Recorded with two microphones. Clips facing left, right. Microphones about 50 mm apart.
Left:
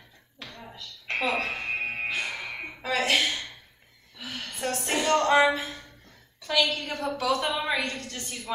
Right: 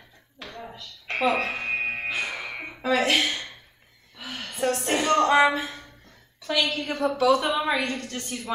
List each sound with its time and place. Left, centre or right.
0.4 s music: centre
3.2 s a woman's voice: centre
4.2 s a sound: centre
4.9 s a woman's voice: centre
7.8 s a woman's voice: centre